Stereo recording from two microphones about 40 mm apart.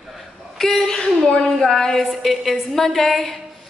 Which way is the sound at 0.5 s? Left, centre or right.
Centre.